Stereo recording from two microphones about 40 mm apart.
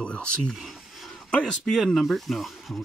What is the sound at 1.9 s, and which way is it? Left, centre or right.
Speech, centre.